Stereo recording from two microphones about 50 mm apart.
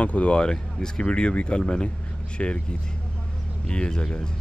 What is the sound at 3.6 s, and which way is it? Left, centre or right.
Speech, centre.